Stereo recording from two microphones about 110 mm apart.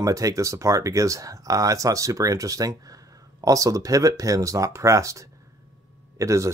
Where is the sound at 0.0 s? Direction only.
30° right (ahead or behind).